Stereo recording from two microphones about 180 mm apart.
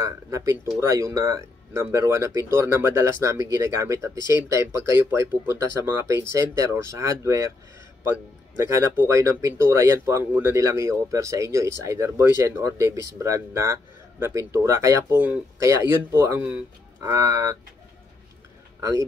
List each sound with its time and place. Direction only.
0.0 s speech: 15° right (ahead or behind)
8.5 s speech: 15° right (ahead or behind)
18.8 s a man's voice: 15° right (ahead or behind)